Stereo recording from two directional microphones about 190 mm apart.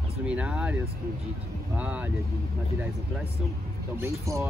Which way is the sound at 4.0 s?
15° right (ahead or behind).